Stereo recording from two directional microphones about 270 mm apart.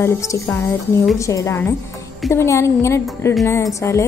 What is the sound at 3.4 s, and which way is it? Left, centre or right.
Speech, centre.